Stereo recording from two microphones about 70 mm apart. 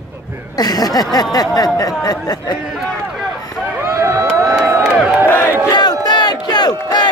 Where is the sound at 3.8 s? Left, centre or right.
Right.